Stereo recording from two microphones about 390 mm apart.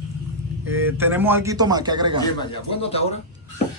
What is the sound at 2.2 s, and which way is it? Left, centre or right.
Speech, centre.